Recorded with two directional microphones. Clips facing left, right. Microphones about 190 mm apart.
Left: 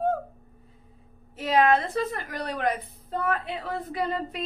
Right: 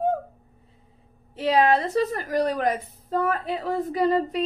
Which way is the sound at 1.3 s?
30° right (ahead or behind).